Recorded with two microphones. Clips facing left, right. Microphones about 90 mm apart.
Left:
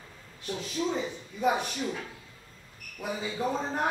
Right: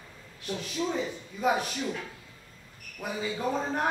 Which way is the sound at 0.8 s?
Centre (ahead or behind).